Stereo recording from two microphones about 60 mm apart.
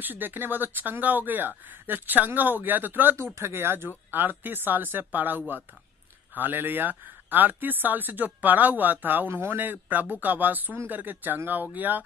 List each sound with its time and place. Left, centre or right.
0.0 s speech: right